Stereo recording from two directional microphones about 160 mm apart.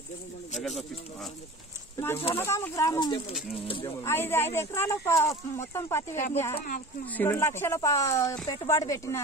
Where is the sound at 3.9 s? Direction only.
15° left (ahead or behind).